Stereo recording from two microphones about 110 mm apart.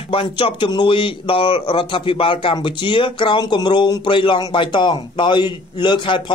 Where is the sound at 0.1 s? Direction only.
55° left (ahead or behind).